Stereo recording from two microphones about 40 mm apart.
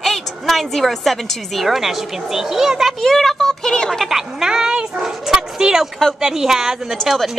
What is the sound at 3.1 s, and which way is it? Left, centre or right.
Speech, centre.